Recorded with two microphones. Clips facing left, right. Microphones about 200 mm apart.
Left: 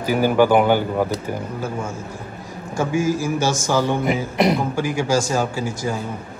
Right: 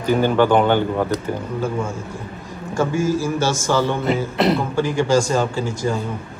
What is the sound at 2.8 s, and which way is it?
A man's voice, 10° left (ahead or behind).